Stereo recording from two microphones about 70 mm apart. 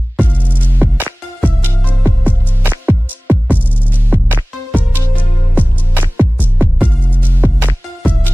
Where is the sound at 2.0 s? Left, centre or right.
Right.